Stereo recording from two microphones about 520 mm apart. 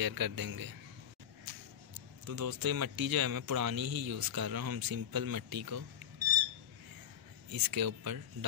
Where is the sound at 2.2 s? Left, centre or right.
Right.